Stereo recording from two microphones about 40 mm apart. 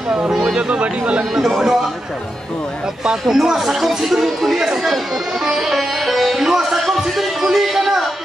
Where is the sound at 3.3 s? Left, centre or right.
Centre.